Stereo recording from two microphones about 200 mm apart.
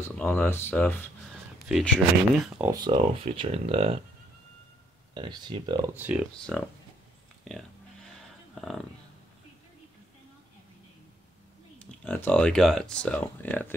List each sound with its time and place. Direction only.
0.0 s speech: 10° left (ahead or behind)
2.6 s speech: 20° right (ahead or behind)
3.3 s speech: 30° right (ahead or behind)
5.1 s speech: 25° right (ahead or behind)
5.9 s speech: 10° right (ahead or behind)
8.5 s speech: centre (ahead or behind)
11.8 s speech: 5° left (ahead or behind)